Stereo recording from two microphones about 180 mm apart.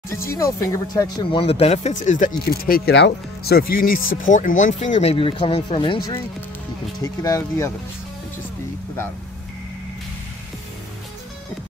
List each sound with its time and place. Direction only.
0.1 s speech: 15° left (ahead or behind)
7.0 s speech: 15° left (ahead or behind)